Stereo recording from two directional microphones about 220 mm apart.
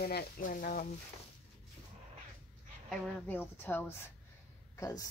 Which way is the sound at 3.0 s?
10° left (ahead or behind).